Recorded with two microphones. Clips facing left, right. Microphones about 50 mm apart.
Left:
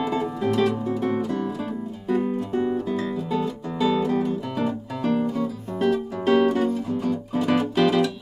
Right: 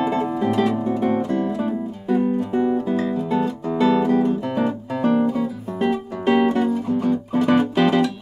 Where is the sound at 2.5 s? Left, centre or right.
Centre.